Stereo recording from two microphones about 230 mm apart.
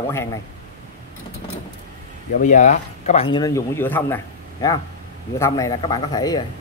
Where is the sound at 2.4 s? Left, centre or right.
Left; by 4.2 s centre.